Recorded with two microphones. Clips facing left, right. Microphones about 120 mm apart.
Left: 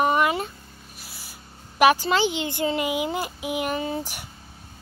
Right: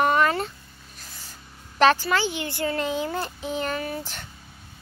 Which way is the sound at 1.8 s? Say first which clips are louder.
Left 1 dB; 15° left (ahead or behind).